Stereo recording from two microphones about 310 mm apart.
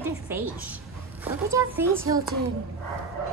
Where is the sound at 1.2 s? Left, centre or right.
Centre.